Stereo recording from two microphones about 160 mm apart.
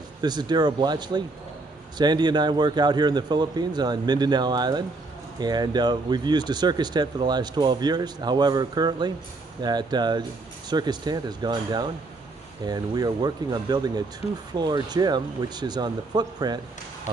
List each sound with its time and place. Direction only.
0.2 s speech: 25° right (ahead or behind)